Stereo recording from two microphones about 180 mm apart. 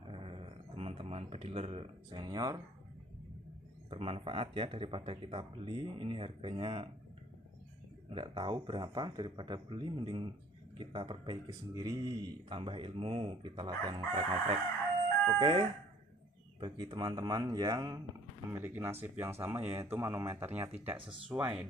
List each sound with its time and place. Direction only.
0.1 s speech: 30° right (ahead or behind)
3.9 s speech: 30° right (ahead or behind)
8.1 s speech: 25° right (ahead or behind)
15.3 s speech: 25° right (ahead or behind)
18.5 s speech: 10° right (ahead or behind)